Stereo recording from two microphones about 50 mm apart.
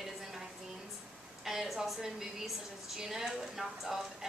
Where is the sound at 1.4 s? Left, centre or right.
Centre.